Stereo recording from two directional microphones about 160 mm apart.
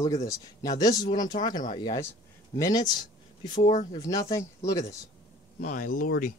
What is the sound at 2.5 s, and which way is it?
Speech, 20° left (ahead or behind).